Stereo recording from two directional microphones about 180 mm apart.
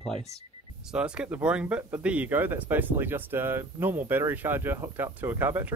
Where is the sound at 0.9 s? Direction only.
5° right (ahead or behind).